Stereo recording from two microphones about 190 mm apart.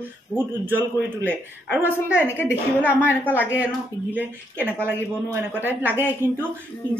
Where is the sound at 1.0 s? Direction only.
10° right (ahead or behind).